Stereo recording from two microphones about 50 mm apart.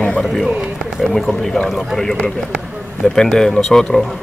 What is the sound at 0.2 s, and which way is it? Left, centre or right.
A man's voice, centre.